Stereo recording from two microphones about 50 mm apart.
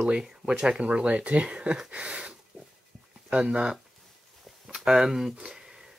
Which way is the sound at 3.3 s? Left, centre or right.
Right.